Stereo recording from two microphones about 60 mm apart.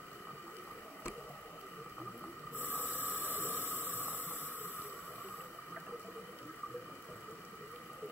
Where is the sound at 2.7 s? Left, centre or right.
Right.